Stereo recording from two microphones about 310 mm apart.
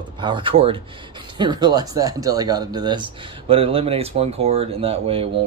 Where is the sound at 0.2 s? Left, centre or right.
Centre.